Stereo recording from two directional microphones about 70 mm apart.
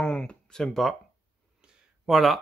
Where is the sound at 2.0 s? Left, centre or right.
Centre.